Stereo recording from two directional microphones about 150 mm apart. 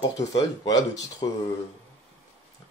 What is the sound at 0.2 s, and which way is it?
Speech, 25° left (ahead or behind).